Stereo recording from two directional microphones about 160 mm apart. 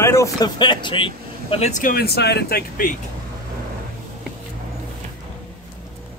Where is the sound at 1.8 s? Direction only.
70° left (ahead or behind).